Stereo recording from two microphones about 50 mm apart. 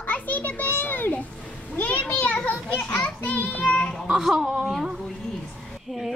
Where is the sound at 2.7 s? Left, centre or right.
Left.